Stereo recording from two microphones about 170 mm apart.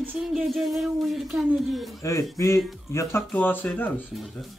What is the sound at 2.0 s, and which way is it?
Speech, 15° left (ahead or behind).